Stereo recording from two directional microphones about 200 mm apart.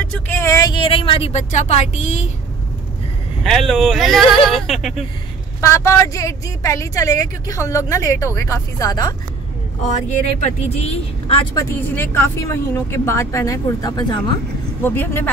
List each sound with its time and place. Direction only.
0.0 s a woman's voice: 5° left (ahead or behind); by 2.3 s 35° left (ahead or behind)
3.4 s speech: centre (ahead or behind)
5.6 s a woman's voice: 15° left (ahead or behind)
9.8 s speech: 35° left (ahead or behind)
11.9 s a woman's voice: 10° left (ahead or behind)